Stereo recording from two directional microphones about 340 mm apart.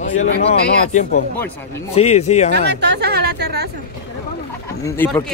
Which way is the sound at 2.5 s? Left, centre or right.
Right.